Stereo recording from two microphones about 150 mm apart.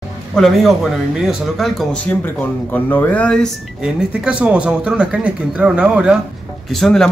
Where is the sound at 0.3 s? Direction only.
Centre (ahead or behind).